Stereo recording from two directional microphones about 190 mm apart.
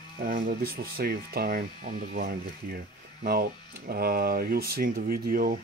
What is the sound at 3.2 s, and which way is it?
Speech, 50° right (ahead or behind).